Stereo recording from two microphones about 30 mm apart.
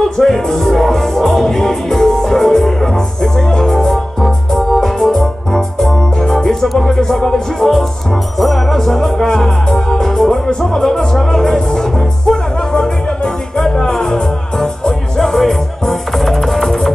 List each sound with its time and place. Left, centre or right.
0.2 s music: centre
4.2 s organ: centre
4.7 s music: centre
10.6 s speech: centre
11.1 s music: centre